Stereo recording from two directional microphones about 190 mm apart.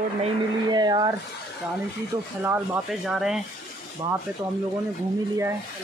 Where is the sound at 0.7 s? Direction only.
20° right (ahead or behind).